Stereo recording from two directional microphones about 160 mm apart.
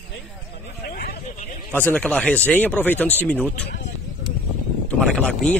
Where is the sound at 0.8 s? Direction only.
70° left (ahead or behind).